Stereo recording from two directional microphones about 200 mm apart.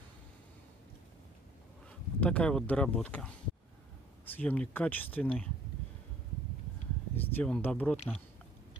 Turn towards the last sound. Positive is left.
turn(degrees=5)  # may be behind; listen again after turning